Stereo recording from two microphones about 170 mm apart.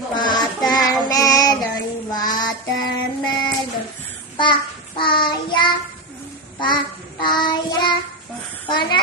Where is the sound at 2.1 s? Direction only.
25° left (ahead or behind).